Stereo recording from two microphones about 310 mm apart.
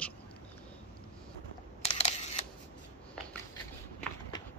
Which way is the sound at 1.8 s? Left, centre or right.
Centre.